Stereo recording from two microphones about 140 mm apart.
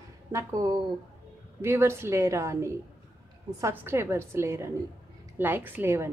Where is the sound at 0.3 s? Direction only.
20° right (ahead or behind).